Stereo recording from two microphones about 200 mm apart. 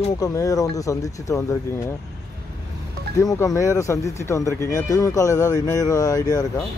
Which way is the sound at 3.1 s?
15° left (ahead or behind).